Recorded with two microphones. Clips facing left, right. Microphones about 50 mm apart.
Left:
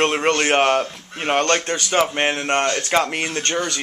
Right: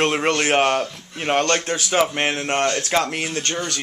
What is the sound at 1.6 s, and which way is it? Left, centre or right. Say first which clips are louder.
Speech: even; centre.